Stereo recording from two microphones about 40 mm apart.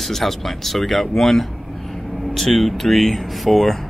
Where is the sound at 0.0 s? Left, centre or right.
Centre.